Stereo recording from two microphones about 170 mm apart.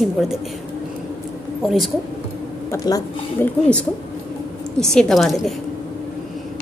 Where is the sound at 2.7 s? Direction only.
20° left (ahead or behind).